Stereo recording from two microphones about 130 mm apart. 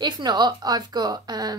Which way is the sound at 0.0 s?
35° right (ahead or behind).